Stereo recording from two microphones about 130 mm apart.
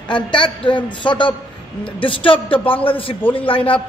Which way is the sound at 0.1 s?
40° left (ahead or behind).